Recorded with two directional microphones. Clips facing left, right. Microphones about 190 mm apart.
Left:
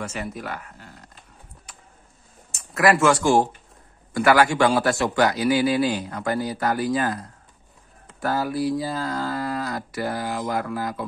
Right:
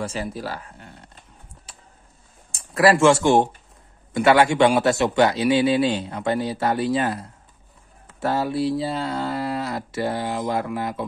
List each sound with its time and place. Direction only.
0.0 s speech: 30° right (ahead or behind)
2.5 s speech: 30° right (ahead or behind)